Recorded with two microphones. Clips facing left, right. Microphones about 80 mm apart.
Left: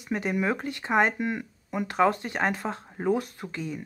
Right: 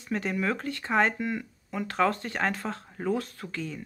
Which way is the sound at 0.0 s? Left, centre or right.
Centre.